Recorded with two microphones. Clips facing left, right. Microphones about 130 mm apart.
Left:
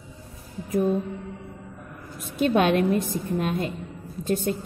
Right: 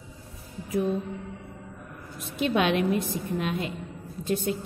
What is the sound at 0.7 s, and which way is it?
Music, 50° left (ahead or behind).